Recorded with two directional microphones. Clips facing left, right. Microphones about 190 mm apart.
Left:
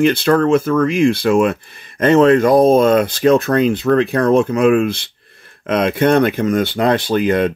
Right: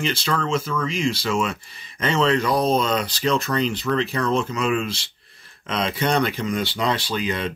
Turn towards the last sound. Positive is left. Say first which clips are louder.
# left 10 dB
turn(degrees=50)  # may be behind; listen again after turning